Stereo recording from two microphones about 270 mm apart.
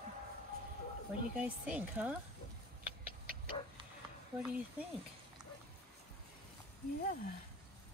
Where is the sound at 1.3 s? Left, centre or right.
Centre.